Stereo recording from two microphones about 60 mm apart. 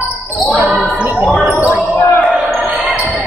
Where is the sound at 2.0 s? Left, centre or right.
Left.